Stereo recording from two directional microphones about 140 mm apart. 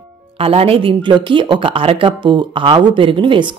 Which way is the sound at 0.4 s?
40° right (ahead or behind).